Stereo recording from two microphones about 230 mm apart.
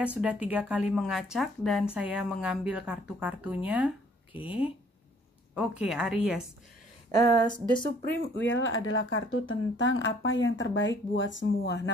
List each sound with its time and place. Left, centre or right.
0.0 s speech: centre
7.1 s speech: centre
8.4 s speech: left